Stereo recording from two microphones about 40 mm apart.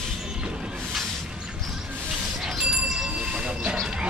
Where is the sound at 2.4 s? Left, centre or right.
Centre.